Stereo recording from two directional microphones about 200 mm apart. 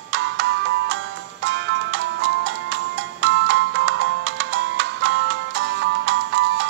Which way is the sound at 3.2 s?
65° right (ahead or behind).